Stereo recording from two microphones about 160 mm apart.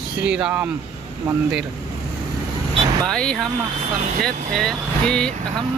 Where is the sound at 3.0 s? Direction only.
5° left (ahead or behind).